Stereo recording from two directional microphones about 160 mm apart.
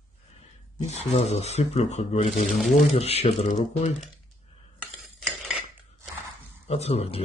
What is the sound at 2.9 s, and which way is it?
Speech, 40° left (ahead or behind).